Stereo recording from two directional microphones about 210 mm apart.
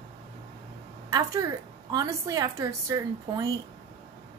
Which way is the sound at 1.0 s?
15° right (ahead or behind).